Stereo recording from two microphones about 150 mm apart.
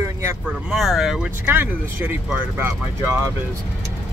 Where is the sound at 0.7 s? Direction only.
Centre (ahead or behind).